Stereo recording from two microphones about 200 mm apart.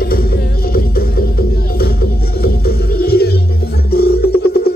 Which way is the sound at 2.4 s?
50° left (ahead or behind).